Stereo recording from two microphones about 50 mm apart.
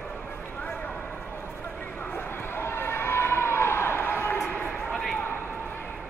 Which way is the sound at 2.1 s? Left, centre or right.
Left.